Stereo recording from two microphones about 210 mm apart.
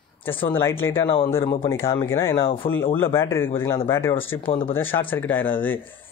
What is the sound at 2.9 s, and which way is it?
Speech, 10° left (ahead or behind).